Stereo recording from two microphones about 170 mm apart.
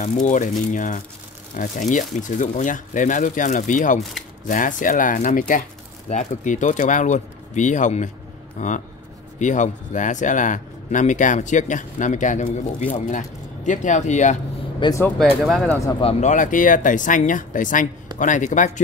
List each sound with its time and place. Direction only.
0.0 s speech: 45° left (ahead or behind)
14.8 s speech: 20° left (ahead or behind)
15.1 s speech: centre (ahead or behind)
16.0 s speech: 40° left (ahead or behind)